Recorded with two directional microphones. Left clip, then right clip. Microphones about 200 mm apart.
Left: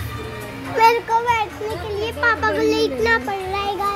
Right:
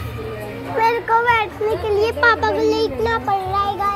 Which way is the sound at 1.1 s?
5° left (ahead or behind).